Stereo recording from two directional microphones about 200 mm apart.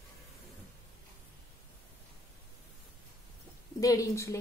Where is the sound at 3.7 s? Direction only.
15° left (ahead or behind).